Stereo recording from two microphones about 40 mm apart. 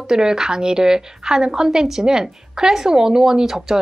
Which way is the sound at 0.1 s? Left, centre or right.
Centre.